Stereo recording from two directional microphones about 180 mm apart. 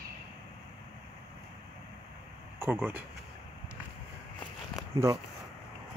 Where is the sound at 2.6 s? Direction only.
10° right (ahead or behind).